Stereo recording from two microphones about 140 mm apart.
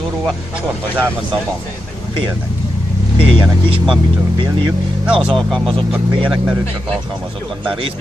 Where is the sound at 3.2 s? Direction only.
40° right (ahead or behind).